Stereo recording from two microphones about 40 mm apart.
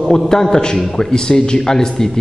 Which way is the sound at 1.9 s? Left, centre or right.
Centre.